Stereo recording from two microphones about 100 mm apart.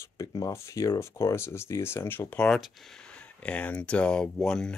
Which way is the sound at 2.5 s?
Centre (ahead or behind).